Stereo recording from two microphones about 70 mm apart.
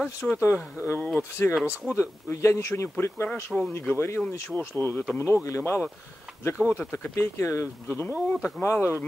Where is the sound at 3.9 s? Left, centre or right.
Left.